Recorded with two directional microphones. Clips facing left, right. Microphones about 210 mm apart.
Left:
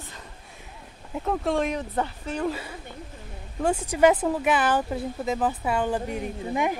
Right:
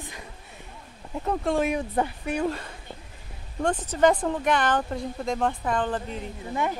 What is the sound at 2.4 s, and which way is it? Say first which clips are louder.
Speech: even; 5° left (ahead or behind).